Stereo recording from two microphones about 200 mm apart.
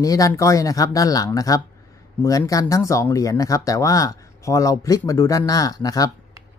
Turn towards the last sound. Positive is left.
turn(degrees=20)  # may be behind; listen again after turning